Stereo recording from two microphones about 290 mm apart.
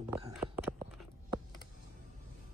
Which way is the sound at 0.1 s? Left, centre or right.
Centre.